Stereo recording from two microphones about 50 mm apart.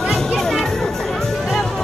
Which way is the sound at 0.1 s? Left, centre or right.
Centre.